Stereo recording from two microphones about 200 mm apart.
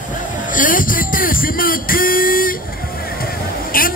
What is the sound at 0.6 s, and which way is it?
Speech, 45° left (ahead or behind).